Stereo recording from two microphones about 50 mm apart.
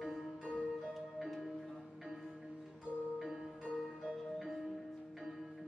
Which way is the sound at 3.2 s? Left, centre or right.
Centre.